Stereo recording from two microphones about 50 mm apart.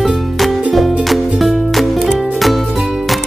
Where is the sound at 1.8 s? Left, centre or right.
Centre.